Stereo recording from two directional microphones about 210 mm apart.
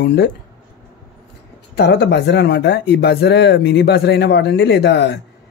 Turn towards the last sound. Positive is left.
turn(degrees=55)  # may be behind; listen again after turning